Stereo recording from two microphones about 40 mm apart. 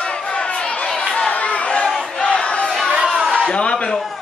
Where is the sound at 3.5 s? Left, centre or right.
Left.